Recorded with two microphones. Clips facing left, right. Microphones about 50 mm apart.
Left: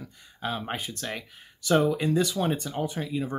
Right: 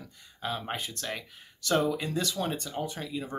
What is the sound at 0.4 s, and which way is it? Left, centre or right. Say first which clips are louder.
Speech: left 2 dB; centre.